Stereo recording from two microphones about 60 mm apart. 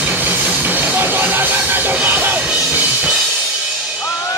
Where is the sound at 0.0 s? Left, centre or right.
Right.